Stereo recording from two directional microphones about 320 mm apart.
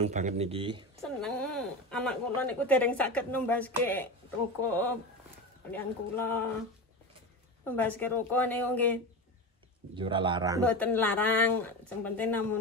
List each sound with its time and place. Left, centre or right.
0.0 s speech: right
1.0 s a woman's voice: centre
7.6 s speech: centre
9.9 s speech: centre
10.6 s speech: centre